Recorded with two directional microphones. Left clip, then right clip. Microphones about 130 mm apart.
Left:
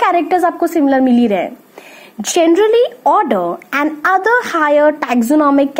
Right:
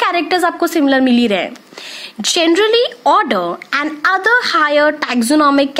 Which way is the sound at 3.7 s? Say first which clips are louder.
Left 1 dB; 15° right (ahead or behind).